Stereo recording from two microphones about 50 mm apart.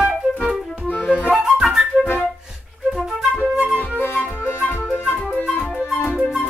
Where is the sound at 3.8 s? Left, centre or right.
Left.